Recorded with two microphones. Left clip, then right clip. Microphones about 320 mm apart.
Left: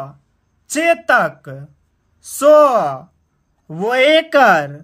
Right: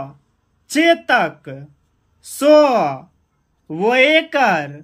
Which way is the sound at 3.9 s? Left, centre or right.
Left.